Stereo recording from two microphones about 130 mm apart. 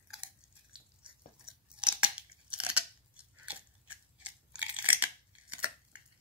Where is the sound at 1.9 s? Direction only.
10° right (ahead or behind).